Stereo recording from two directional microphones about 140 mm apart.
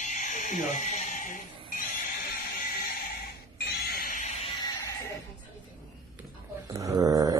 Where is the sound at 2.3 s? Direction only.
90° left.